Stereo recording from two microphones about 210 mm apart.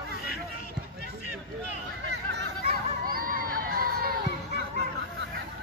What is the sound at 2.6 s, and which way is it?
Crowd, 45° right (ahead or behind).